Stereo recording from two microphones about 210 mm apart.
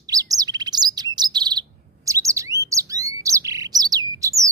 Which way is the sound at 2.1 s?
15° right (ahead or behind).